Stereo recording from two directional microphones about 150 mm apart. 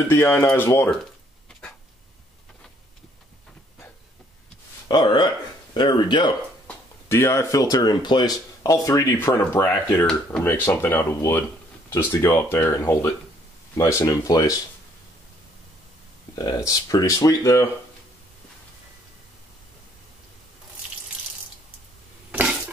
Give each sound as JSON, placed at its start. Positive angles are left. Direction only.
{"t": 0.1, "sound": "speech", "side_deg": 15}
{"t": 4.8, "sound": "speech", "side_deg": 30}
{"t": 6.7, "sound": "speech", "side_deg": 15}
{"t": 16.3, "sound": "speech", "side_deg": 25}
{"t": 22.3, "sound": "a sound", "side_deg": -10}